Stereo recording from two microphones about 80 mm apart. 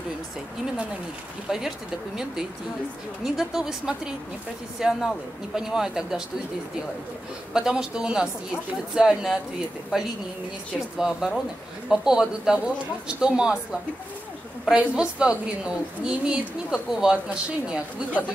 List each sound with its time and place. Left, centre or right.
1.5 s a woman's voice: centre
3.3 s a woman's voice: centre
7.5 s a woman's voice: centre